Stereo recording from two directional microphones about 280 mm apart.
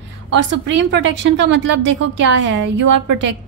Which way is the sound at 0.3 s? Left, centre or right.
Right.